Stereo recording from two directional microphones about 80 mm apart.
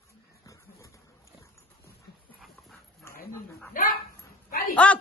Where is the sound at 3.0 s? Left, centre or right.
Left.